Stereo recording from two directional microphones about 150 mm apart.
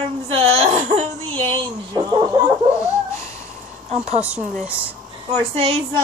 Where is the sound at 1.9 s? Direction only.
25° right (ahead or behind).